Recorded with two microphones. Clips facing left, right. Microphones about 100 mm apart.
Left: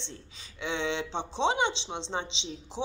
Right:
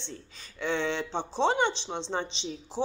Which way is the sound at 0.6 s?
20° left (ahead or behind).